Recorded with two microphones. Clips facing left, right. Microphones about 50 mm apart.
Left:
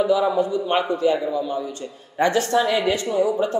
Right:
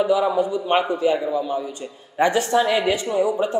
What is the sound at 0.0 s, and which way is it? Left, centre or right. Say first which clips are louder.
A man's voice: even; centre.